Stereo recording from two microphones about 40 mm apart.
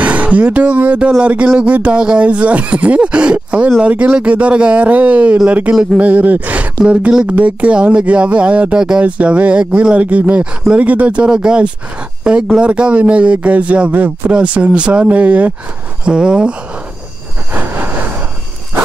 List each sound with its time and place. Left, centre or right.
0.0 s speech: right
2.0 s speech: right
2.2 s speech: right
5.7 s speech: centre
5.9 s speech: right
8.7 s speech: centre
9.0 s speech: right
11.2 s speech: right
15.0 s speech: right
16.0 s speech: right